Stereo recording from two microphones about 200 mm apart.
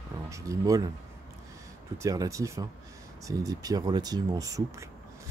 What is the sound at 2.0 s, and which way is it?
Speech, 15° right (ahead or behind).